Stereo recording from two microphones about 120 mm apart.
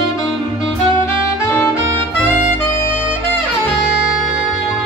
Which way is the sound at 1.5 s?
15° left (ahead or behind).